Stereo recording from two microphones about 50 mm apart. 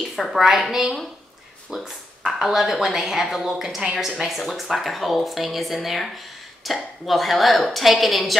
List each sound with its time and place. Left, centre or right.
0.1 s speech: centre
1.7 s speech: centre
2.4 s speech: centre